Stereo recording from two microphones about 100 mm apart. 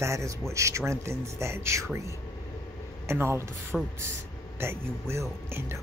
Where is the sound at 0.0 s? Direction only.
30° right (ahead or behind).